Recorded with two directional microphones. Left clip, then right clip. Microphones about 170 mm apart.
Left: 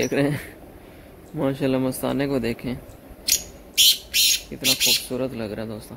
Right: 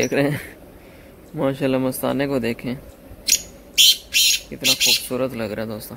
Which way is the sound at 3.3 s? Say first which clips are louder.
Right 3 dB; 60° left (ahead or behind).